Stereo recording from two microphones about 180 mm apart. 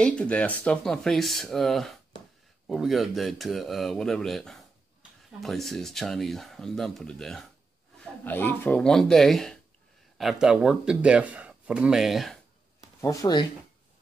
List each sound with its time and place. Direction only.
0.0 s speech: 5° left (ahead or behind)
13.0 s speech: 20° left (ahead or behind)